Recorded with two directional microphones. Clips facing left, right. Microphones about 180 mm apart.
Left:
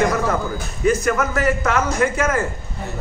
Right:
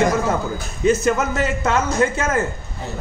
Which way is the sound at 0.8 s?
25° right (ahead or behind).